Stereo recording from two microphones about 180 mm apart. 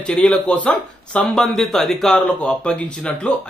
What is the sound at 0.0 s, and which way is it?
A man's voice, 5° left (ahead or behind).